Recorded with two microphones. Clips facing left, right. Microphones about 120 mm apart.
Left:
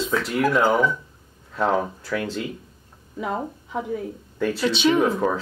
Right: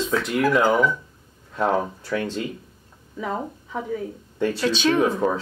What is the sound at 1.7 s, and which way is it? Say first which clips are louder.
Speech: even; 35° right (ahead or behind).